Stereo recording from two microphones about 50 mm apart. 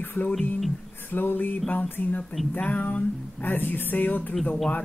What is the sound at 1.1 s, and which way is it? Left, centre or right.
Speech, left.